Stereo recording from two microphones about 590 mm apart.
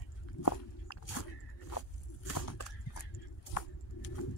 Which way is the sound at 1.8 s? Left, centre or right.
Left.